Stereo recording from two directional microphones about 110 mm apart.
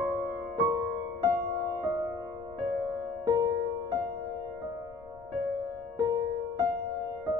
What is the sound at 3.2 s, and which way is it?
Music, 35° right (ahead or behind).